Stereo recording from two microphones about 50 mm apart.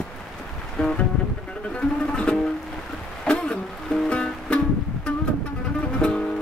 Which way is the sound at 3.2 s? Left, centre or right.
Centre.